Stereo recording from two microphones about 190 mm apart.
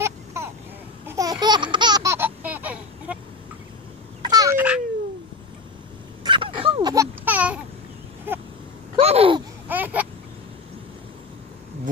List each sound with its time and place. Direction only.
0.0 s vehicle: 15° right (ahead or behind)
1.0 s laughter: 20° right (ahead or behind)
4.2 s babbling: 20° right (ahead or behind)
6.2 s babbling: 25° right (ahead or behind); by 7.6 s 10° right (ahead or behind)
8.3 s vehicle: 10° right (ahead or behind)
8.9 s babbling: 30° right (ahead or behind)
9.7 s babbling: 10° right (ahead or behind)